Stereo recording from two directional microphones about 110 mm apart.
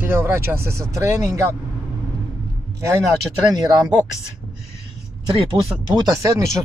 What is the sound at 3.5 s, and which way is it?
Speech, 35° right (ahead or behind).